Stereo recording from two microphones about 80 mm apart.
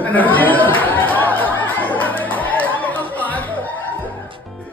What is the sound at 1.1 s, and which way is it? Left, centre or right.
Chatter, left.